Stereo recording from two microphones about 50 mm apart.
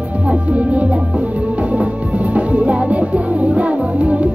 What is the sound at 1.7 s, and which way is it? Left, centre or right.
Music, right.